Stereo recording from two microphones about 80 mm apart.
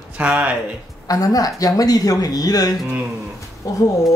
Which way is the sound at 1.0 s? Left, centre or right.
Left.